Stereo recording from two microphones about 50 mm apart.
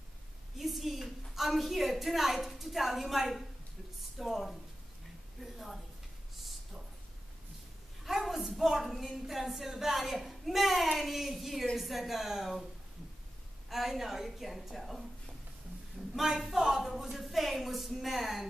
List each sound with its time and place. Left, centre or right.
0.6 s a woman's voice: centre
5.4 s a sound: centre
8.0 s a woman's voice: centre
13.7 s a woman's voice: centre
16.2 s a woman's voice: centre